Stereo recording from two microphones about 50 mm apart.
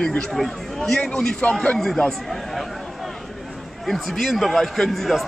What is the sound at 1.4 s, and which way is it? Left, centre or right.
Speech, left.